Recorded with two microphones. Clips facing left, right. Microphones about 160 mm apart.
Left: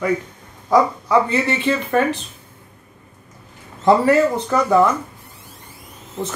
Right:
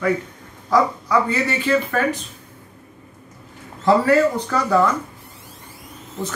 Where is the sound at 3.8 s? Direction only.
20° left (ahead or behind).